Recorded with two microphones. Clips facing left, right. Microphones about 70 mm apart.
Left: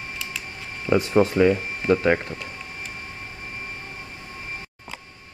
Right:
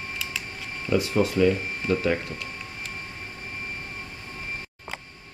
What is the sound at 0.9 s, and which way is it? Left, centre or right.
Speech, left.